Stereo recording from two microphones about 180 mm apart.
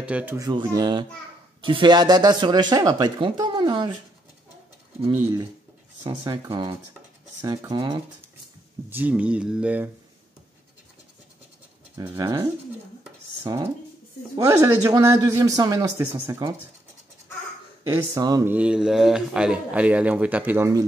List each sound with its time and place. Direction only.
0.0 s speech: 10° right (ahead or behind)
0.5 s speech: 20° right (ahead or behind)
5.1 s speech: 15° right (ahead or behind)
8.9 s speech: 10° right (ahead or behind)
12.2 s speech: 20° right (ahead or behind)
17.8 s speech: 15° right (ahead or behind)
18.5 s speech: 5° right (ahead or behind)